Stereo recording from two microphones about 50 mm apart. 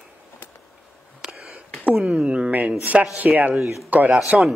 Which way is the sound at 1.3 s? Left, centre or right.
Centre.